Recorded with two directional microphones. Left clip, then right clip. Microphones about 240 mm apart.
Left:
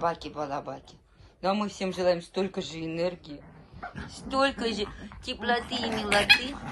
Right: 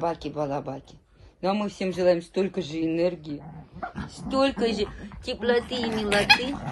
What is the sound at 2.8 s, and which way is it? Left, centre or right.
Speech, left.